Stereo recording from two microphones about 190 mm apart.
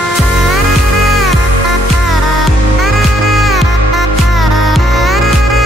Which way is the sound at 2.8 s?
Centre (ahead or behind).